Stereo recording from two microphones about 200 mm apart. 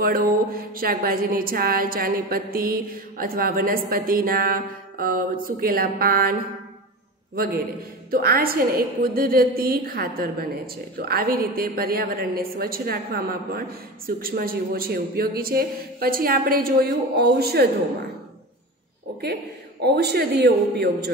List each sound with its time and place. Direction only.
0.0 s a woman's voice: 45° right (ahead or behind)
7.3 s a woman's voice: 50° right (ahead or behind)
19.8 s a man's voice: 55° right (ahead or behind)